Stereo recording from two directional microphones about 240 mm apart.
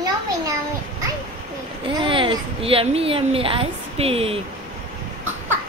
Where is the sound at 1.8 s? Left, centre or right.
Right.